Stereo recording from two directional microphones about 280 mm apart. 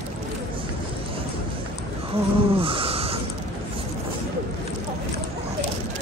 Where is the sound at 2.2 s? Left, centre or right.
Right.